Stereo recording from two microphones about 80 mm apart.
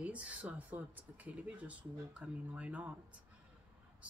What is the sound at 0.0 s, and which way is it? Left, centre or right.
Speech, centre.